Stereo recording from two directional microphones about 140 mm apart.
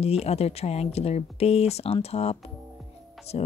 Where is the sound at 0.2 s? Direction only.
50° left (ahead or behind).